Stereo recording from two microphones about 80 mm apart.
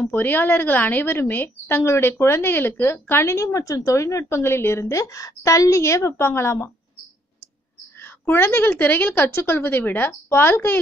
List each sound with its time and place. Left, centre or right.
0.1 s a woman's voice: left
8.0 s a woman's voice: left